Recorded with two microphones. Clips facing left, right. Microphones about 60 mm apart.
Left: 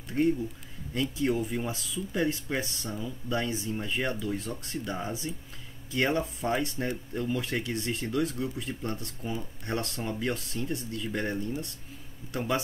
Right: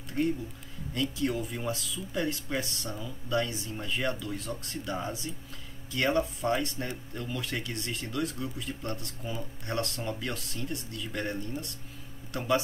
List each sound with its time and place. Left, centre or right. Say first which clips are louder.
0.9 s speech: left 2 dB; centre